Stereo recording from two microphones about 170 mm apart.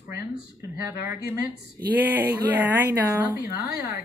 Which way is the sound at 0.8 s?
15° right (ahead or behind).